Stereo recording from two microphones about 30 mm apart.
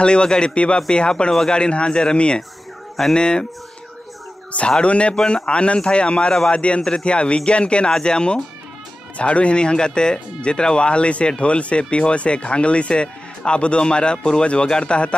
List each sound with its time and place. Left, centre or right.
0.0 s speech: left
4.8 s speech: left
9.1 s speech: left
14.4 s speech: left